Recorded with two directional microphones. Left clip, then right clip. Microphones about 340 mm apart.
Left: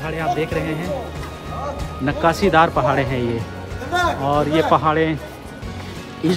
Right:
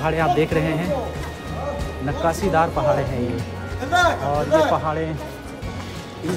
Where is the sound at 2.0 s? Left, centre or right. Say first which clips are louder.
Left 5 dB; left.